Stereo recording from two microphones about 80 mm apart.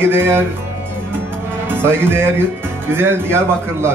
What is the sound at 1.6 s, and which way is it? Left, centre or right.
Speech, right.